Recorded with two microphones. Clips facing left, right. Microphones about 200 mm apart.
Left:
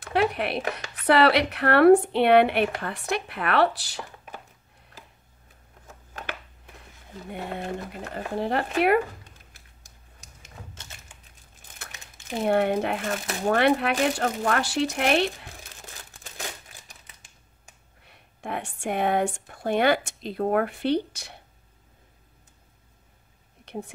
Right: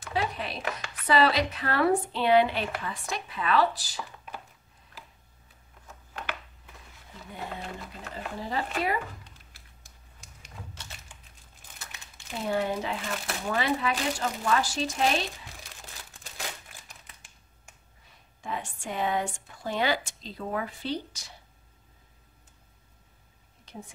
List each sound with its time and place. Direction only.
0.0 s a sound: 65° left (ahead or behind)
1.0 s speech: 65° left (ahead or behind)
7.2 s speech: 55° left (ahead or behind)
12.4 s speech: 60° left (ahead or behind)
18.0 s speech: 65° left (ahead or behind)